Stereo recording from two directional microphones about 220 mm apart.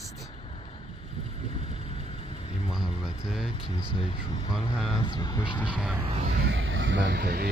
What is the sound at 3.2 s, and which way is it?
Speech, centre (ahead or behind).